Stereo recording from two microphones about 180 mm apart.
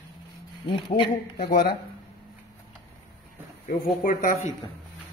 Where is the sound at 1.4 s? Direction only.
55° left (ahead or behind).